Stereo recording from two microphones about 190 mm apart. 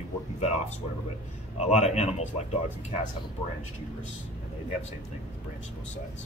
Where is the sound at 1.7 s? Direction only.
35° left (ahead or behind).